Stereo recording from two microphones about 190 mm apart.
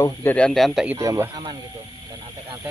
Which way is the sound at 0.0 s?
10° left (ahead or behind).